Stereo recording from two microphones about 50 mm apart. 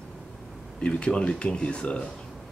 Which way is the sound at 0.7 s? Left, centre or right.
Centre.